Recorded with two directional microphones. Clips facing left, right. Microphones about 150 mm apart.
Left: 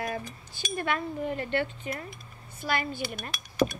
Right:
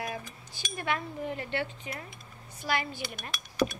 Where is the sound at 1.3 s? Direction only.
55° left (ahead or behind).